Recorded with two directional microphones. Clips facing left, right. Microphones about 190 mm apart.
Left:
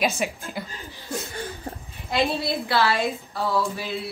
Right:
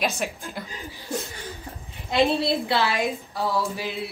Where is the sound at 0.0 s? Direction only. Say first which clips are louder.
Left 2 dB; centre (ahead or behind).